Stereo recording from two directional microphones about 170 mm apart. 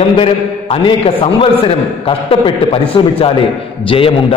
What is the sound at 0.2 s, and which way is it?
A man's voice, 35° left (ahead or behind).